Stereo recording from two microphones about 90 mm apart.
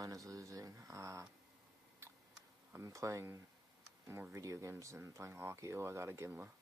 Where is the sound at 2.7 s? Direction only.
35° right (ahead or behind).